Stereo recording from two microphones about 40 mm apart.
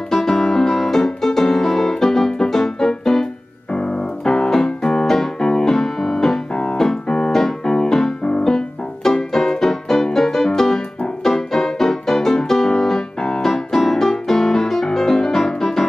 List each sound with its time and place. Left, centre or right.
0.1 s music: centre
3.7 s music: left
4.8 s piano: centre
6.8 s keyboard: centre
8.2 s music: left
8.5 s music: centre